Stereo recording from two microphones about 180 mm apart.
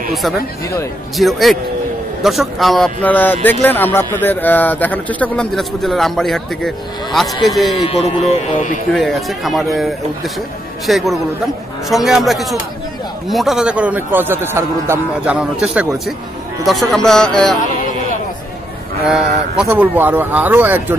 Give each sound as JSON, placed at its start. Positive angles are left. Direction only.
{"t": 0.1, "sound": "a man's voice", "side_deg": 0}
{"t": 8.3, "sound": "speech", "side_deg": 45}
{"t": 8.9, "sound": "speech", "side_deg": 0}
{"t": 10.9, "sound": "a man's voice", "side_deg": 0}
{"t": 19.0, "sound": "a man's voice", "side_deg": -5}